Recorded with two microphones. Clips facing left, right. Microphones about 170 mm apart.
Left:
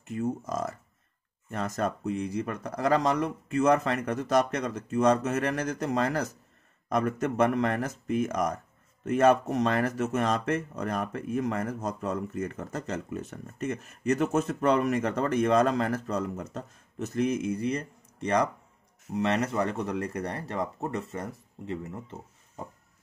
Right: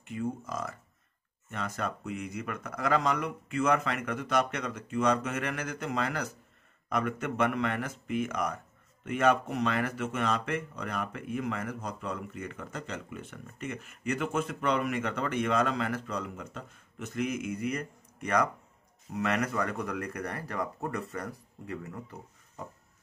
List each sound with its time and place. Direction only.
0.0 s speech: 40° left (ahead or behind); by 22.7 s 25° left (ahead or behind)